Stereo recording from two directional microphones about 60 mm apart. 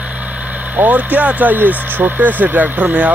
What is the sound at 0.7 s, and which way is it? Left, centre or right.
Speech, right.